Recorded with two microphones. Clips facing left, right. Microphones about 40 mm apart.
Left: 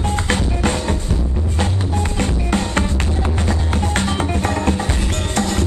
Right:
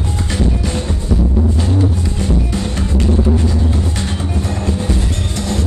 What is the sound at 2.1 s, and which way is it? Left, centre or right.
Music, left.